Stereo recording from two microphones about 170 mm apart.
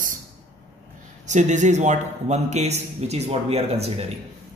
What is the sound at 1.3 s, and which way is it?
A man's voice, 45° right (ahead or behind).